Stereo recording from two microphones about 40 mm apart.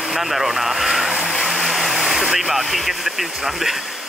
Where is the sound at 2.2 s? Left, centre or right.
Centre.